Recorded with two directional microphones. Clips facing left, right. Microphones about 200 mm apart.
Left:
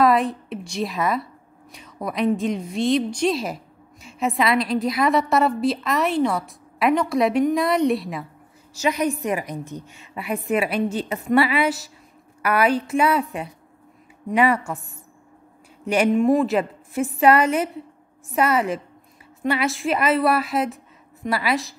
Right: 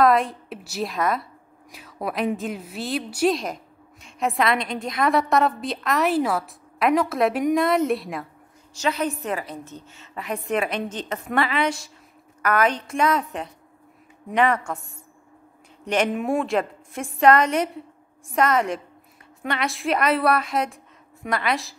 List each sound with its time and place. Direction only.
0.0 s a woman's voice: centre (ahead or behind)
3.3 s a woman's voice: 5° left (ahead or behind)
8.7 s a woman's voice: 10° left (ahead or behind)
15.8 s a woman's voice: 10° left (ahead or behind)